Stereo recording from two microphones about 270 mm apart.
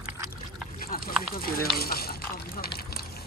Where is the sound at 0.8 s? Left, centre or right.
Left.